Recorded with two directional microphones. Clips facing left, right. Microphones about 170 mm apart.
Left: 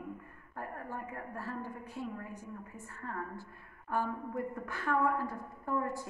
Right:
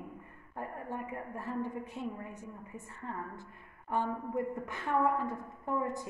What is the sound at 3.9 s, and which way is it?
A woman's voice, 20° right (ahead or behind).